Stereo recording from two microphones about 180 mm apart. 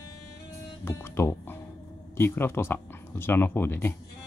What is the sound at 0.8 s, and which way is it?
Speech, 15° left (ahead or behind).